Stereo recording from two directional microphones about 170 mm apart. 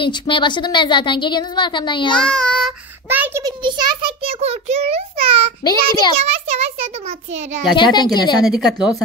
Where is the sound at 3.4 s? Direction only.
25° right (ahead or behind).